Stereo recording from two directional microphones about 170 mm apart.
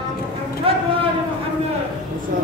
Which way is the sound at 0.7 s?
35° right (ahead or behind).